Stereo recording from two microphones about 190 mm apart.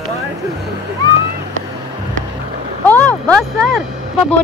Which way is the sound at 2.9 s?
5° left (ahead or behind).